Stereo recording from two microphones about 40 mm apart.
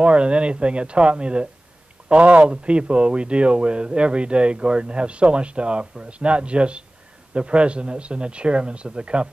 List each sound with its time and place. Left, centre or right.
0.0 s speech: right